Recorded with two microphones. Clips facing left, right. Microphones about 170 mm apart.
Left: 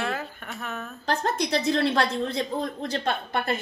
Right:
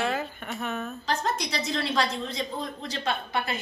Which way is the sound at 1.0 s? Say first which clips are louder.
Left 4 dB; 55° left (ahead or behind).